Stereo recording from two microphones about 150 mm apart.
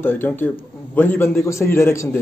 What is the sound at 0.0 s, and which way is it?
Speech, 15° left (ahead or behind).